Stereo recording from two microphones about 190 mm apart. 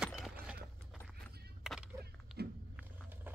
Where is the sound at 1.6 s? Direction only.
5° right (ahead or behind).